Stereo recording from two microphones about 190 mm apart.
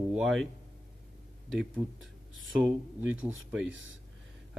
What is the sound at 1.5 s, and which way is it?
Speech, 5° right (ahead or behind).